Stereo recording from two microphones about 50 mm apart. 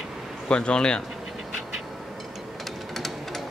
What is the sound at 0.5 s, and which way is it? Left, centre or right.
Speech, centre.